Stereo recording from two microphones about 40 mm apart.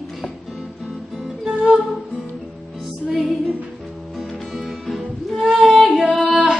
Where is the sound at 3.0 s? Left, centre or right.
Centre.